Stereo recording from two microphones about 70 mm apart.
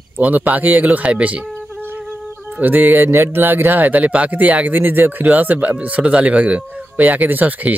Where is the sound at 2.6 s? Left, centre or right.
Right.